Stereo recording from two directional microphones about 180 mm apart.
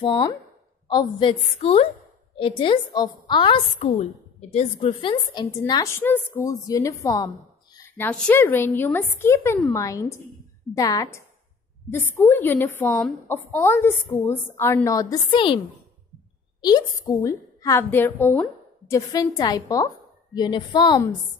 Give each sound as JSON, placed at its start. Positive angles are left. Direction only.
{"t": 0.0, "sound": "a woman's voice", "side_deg": 25}
{"t": 16.6, "sound": "a woman's voice", "side_deg": 20}